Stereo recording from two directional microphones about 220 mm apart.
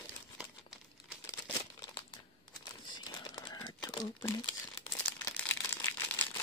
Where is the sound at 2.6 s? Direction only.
20° left (ahead or behind).